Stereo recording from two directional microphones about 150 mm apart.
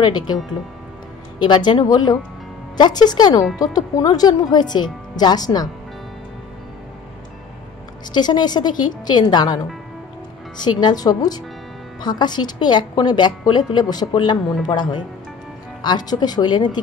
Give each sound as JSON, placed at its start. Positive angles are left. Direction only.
{"t": 0.0, "sound": "speech", "side_deg": 30}
{"t": 1.4, "sound": "speech", "side_deg": 30}
{"t": 8.1, "sound": "speech", "side_deg": 30}
{"t": 10.6, "sound": "speech", "side_deg": 30}